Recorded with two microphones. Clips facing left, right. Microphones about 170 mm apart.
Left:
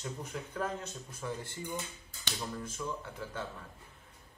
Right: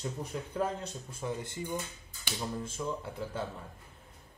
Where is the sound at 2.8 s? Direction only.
20° right (ahead or behind).